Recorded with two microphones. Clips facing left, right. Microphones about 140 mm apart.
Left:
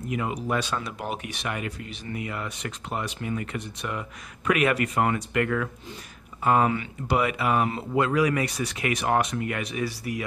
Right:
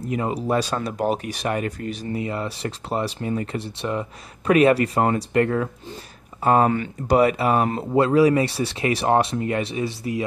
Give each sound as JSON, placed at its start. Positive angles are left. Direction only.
{"t": 0.0, "sound": "speech", "side_deg": -35}